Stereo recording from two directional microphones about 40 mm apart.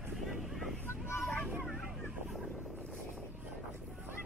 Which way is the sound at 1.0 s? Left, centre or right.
Left.